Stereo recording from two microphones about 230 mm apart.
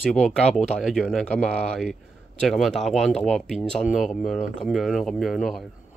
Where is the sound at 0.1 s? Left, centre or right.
Centre.